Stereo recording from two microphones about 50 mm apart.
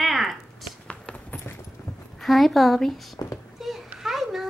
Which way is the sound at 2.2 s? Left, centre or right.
Centre.